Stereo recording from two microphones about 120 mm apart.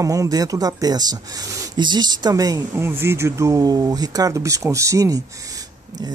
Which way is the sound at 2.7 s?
20° right (ahead or behind).